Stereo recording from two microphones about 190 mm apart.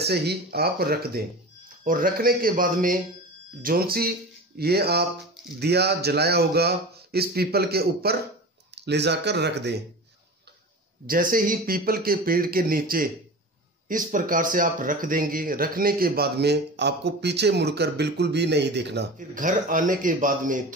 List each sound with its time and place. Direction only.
0.0 s a man's voice: 60° right (ahead or behind)
11.1 s a man's voice: 45° right (ahead or behind); by 19.0 s 65° right (ahead or behind)
19.1 s a man's voice: 45° right (ahead or behind)